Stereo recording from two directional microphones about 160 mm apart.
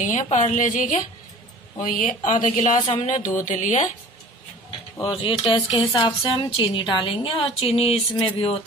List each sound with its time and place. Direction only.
0.0 s speech: 55° left (ahead or behind)
5.0 s a woman's voice: 35° left (ahead or behind)